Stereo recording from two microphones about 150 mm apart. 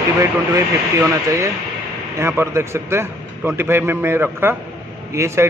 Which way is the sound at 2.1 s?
15° right (ahead or behind).